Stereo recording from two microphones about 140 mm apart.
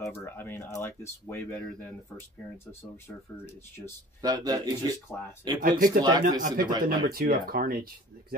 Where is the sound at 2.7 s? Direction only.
15° left (ahead or behind).